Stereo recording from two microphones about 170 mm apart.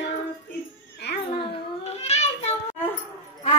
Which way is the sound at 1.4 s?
40° left (ahead or behind).